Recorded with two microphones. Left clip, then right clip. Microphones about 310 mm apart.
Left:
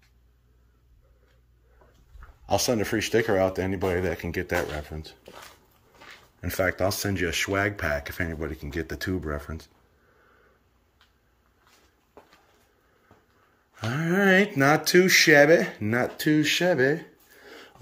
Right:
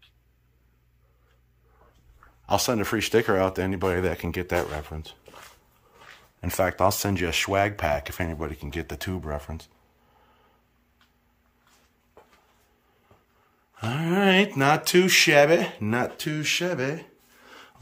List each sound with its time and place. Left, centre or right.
2.4 s speech: centre
7.0 s speech: centre
9.1 s speech: right
14.1 s speech: centre